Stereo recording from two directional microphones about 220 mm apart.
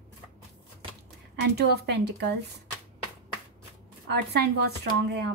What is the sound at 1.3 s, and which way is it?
Speech, 50° right (ahead or behind).